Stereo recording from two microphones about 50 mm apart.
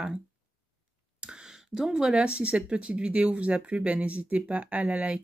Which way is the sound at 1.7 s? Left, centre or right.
Centre.